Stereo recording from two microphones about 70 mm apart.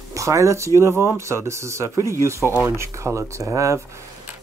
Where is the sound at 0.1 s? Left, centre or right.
Right.